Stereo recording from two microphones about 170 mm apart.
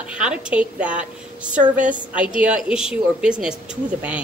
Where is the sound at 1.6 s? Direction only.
50° right (ahead or behind).